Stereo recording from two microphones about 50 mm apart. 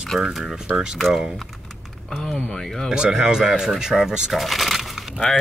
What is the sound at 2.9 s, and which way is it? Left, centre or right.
Speech, centre.